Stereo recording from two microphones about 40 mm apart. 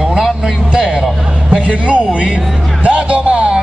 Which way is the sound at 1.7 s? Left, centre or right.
Right.